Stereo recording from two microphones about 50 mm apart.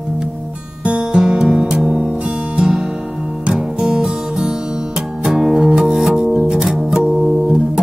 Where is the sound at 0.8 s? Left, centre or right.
Right.